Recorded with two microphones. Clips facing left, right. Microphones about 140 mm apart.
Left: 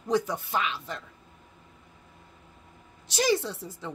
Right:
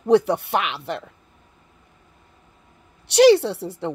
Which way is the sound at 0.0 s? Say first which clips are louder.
Right 10 dB; 65° right (ahead or behind).